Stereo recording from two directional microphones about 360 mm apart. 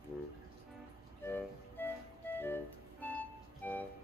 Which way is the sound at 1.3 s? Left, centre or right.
Centre.